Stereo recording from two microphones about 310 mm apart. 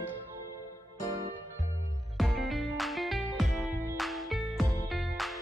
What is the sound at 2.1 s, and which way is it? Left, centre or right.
Music, centre.